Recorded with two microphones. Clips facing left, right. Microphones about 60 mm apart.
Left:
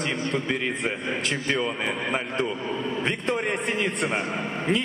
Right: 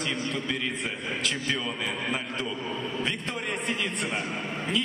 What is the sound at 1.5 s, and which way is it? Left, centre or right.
Speech, left.